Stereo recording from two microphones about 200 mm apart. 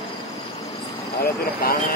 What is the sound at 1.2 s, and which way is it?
Vehicle, 50° left (ahead or behind).